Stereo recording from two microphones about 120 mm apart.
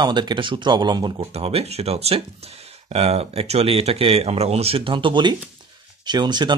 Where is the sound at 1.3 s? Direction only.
55° right (ahead or behind).